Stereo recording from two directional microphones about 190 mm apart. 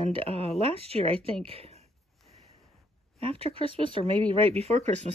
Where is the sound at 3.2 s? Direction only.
30° right (ahead or behind).